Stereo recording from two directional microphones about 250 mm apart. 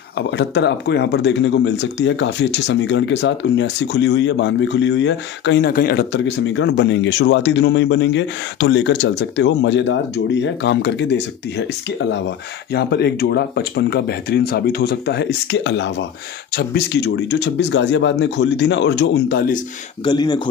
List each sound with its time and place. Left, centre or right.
0.3 s speech: left
20.1 s speech: centre